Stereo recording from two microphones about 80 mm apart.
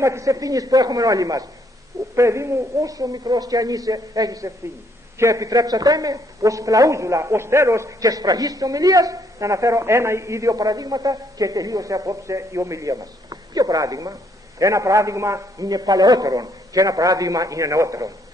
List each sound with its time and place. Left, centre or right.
0.0 s a man's voice: right
2.1 s a man's voice: right
15.6 s a man's voice: right